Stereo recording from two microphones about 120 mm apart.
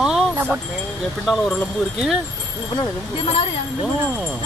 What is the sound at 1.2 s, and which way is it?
Speech, centre (ahead or behind).